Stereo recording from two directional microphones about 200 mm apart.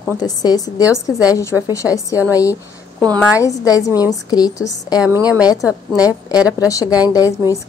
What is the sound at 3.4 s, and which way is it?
A woman's voice, 15° left (ahead or behind).